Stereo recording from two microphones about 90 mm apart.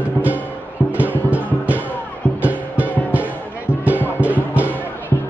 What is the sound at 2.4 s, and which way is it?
Music, 15° right (ahead or behind).